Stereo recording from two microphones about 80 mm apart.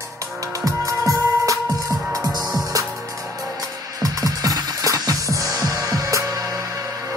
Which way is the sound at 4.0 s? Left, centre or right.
Right.